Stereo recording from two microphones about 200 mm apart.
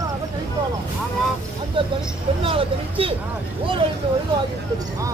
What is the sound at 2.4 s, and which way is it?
Speech, 25° right (ahead or behind).